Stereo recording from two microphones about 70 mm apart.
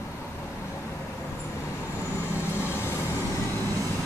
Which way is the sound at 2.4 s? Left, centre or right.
Left.